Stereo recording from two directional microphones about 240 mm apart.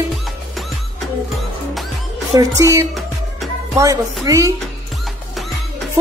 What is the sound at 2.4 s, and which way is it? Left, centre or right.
Music, centre.